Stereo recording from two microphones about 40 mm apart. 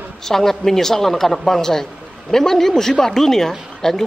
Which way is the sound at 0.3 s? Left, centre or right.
Centre.